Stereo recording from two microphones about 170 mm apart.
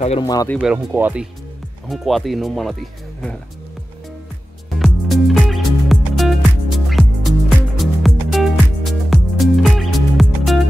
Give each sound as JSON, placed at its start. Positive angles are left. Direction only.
{"t": 0.2, "sound": "speech", "side_deg": 20}
{"t": 0.6, "sound": "speech", "side_deg": -10}
{"t": 4.7, "sound": "music", "side_deg": 0}